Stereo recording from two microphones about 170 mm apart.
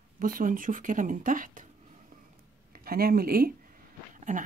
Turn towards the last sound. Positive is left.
turn(degrees=-50)  # may be behind; listen again after turning